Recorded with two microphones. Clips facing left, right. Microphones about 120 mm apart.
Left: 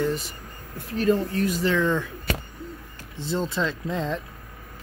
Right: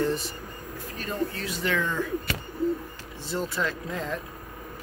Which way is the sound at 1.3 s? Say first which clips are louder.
Left 9 dB; 50° left (ahead or behind).